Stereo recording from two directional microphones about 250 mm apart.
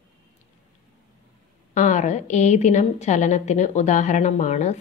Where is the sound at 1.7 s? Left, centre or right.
Left.